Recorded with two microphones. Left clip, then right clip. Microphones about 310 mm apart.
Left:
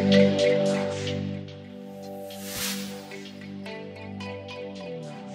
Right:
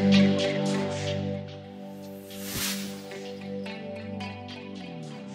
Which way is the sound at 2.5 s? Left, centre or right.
Centre.